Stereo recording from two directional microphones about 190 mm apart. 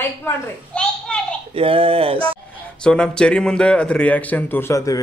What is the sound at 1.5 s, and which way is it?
Speech, 30° right (ahead or behind).